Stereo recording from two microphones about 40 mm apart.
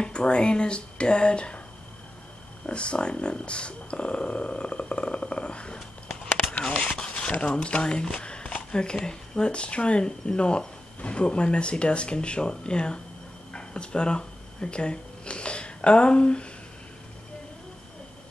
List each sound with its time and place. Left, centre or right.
0.0 s speech: left
2.6 s speech: left
7.0 s shuffling cards: left
8.7 s speech: left
13.5 s a sound: left